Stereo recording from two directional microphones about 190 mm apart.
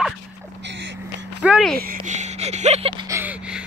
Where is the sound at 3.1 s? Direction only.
10° right (ahead or behind).